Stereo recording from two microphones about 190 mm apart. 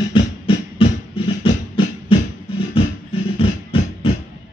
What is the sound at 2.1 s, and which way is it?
Beatboxing, 30° left (ahead or behind).